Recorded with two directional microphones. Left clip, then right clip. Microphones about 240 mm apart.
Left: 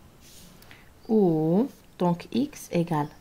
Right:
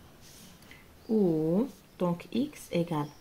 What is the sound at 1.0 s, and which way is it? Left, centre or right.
Speech, left.